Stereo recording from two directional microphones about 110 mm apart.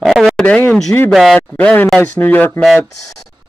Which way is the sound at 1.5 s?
10° left (ahead or behind).